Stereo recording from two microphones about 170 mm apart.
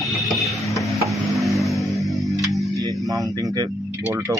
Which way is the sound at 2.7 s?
20° right (ahead or behind).